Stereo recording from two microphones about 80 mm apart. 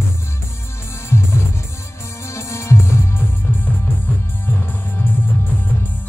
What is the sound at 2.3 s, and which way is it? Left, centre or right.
Music, left.